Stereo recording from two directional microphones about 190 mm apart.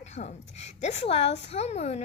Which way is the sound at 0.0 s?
35° left (ahead or behind).